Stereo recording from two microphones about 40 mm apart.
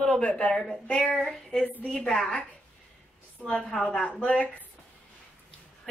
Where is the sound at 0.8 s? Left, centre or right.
Left.